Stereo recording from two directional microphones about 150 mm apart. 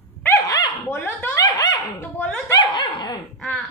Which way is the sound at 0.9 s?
10° left (ahead or behind).